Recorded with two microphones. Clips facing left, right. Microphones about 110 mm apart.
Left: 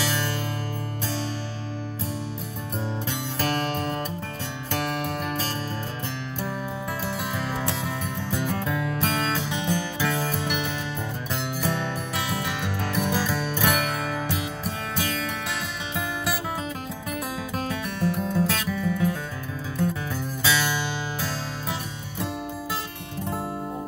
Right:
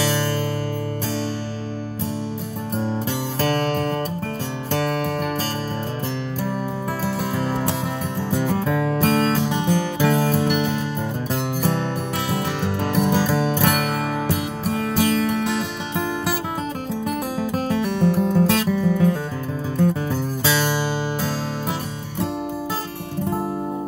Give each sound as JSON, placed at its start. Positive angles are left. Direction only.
{"t": 0.0, "sound": "music", "side_deg": -40}
{"t": 3.3, "sound": "music", "side_deg": -40}
{"t": 7.1, "sound": "music", "side_deg": -40}
{"t": 17.4, "sound": "music", "side_deg": -40}
{"t": 18.3, "sound": "music", "side_deg": -45}